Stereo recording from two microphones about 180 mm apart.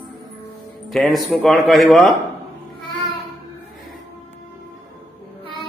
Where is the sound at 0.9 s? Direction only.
Centre (ahead or behind).